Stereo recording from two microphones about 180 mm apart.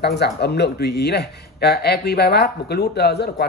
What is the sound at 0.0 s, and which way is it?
Speech, 65° left (ahead or behind).